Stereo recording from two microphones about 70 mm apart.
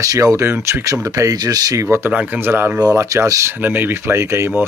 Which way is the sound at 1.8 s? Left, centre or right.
Right.